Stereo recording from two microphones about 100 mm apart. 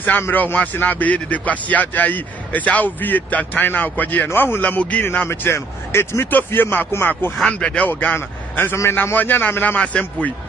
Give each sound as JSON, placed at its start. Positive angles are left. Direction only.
{"t": 0.0, "sound": "a man's voice", "side_deg": 20}
{"t": 7.3, "sound": "a man's voice", "side_deg": 5}